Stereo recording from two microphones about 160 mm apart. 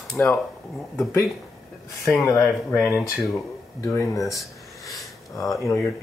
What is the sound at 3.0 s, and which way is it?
Speech, centre (ahead or behind).